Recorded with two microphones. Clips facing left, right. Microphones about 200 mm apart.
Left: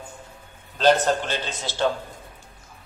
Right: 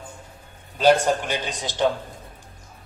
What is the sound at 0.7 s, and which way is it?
A man's voice, 10° right (ahead or behind).